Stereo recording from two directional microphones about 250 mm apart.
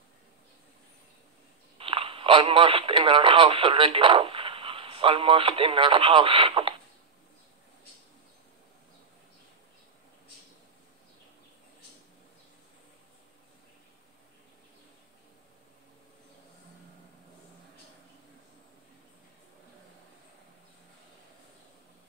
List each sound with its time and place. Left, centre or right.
1.8 s speech: right